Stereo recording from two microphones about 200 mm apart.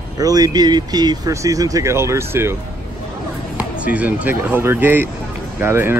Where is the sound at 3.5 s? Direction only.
5° right (ahead or behind).